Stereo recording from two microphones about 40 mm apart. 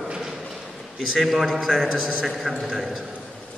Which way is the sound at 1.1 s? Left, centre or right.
Centre.